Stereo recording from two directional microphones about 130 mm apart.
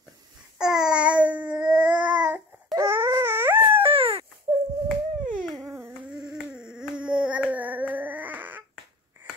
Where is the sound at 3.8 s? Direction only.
45° right (ahead or behind).